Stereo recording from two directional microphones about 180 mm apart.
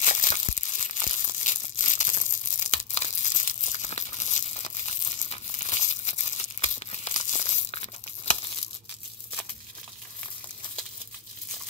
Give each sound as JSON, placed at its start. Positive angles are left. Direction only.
{"t": 0.0, "sound": "crumpling", "side_deg": 45}
{"t": 2.6, "sound": "tearing", "side_deg": 45}